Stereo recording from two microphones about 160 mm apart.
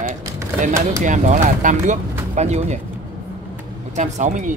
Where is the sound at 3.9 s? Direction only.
50° right (ahead or behind).